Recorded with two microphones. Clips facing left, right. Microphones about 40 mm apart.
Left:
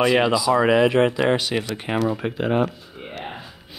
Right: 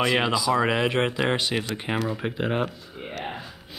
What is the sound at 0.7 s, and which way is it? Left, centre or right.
Speech, right.